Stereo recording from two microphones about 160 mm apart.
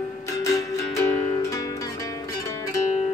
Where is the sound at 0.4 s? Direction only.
20° left (ahead or behind).